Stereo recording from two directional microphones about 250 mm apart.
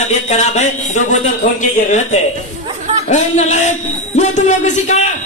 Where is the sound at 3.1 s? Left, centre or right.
Left.